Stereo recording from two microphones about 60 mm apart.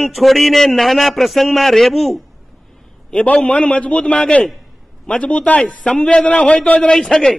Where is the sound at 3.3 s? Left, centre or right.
Centre.